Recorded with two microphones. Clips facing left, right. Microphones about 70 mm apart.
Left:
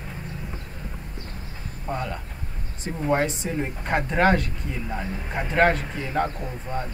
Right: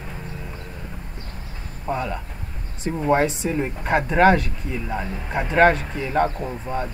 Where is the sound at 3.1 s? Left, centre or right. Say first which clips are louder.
Right 4 dB; centre.